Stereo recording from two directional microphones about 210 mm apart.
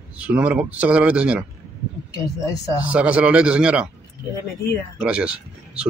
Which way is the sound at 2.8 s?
5° right (ahead or behind).